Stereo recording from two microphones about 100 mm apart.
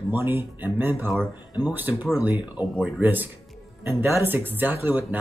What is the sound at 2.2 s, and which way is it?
Speech, 15° right (ahead or behind).